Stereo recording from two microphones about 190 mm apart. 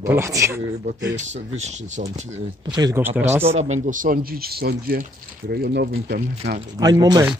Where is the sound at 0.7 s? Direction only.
35° right (ahead or behind).